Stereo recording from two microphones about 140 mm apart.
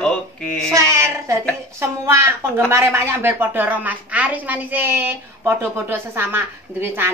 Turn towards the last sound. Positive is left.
turn(degrees=-15)  # may be behind; listen again after turning